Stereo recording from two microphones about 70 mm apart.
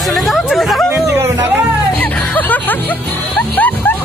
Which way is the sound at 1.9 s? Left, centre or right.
Left.